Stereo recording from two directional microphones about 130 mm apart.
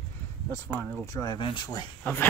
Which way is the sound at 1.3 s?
40° left (ahead or behind).